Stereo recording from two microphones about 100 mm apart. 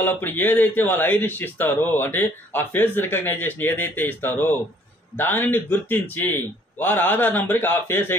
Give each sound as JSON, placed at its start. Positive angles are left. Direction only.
{"t": 0.0, "sound": "speech", "side_deg": 20}